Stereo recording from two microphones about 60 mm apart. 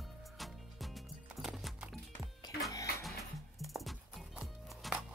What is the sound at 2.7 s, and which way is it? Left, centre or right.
Music, left.